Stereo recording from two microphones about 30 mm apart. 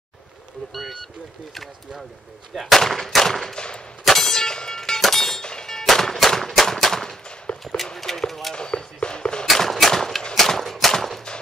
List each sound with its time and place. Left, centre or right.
2.5 s gunshot: centre
3.5 s gunshot: left
4.1 s clang: centre
5.0 s breaking: centre
5.4 s a sound: left
5.7 s music: centre
6.1 s gunshot: centre
7.6 s a sound: centre
7.9 s clip-clop: centre
8.5 s a sound: left
9.5 s gunshot: centre
10.3 s a sound: centre
10.9 s gunshot: centre